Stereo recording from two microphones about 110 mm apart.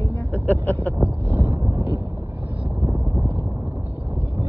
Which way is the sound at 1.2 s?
20° right (ahead or behind).